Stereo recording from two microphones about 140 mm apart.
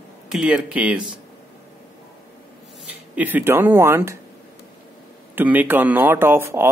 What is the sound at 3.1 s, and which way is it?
Speech, 10° right (ahead or behind).